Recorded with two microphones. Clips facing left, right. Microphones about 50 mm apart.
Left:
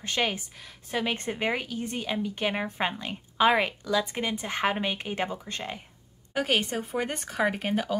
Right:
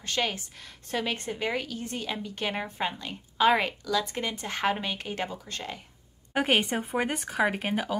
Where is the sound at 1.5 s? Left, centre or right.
Centre.